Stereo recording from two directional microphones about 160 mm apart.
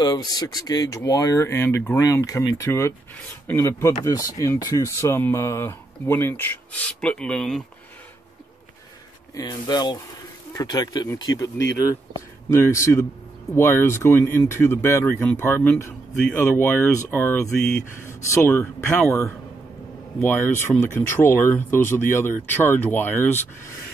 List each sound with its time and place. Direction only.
0.0 s speech: 25° left (ahead or behind); by 7.6 s 5° left (ahead or behind)
9.3 s speech: 25° left (ahead or behind)